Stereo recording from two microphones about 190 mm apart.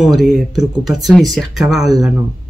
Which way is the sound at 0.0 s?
Centre (ahead or behind).